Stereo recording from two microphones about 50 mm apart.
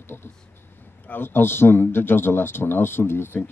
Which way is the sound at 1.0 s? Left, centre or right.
Left.